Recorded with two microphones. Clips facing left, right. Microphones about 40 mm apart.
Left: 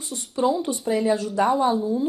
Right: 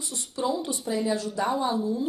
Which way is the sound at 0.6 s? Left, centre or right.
Left.